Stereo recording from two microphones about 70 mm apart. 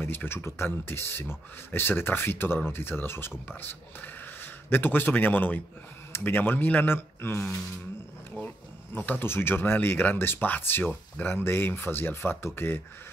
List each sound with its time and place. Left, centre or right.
0.0 s speech: left
8.9 s speech: left